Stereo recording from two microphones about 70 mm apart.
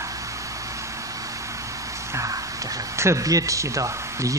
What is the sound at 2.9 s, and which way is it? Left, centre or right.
Speech, right.